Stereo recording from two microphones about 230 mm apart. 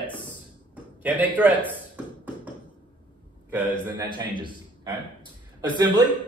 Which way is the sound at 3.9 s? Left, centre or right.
Centre.